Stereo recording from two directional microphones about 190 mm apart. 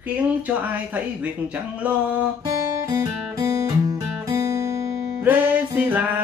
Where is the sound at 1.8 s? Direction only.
10° right (ahead or behind).